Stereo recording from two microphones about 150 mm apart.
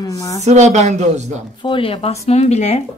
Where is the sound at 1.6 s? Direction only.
35° left (ahead or behind).